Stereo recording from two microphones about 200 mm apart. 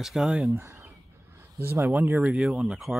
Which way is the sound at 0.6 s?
15° right (ahead or behind).